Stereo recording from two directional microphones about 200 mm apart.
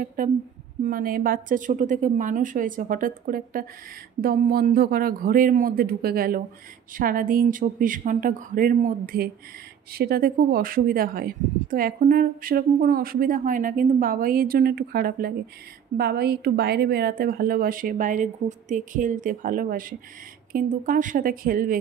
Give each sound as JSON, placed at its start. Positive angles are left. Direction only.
{"t": 0.0, "sound": "a woman's voice", "side_deg": -45}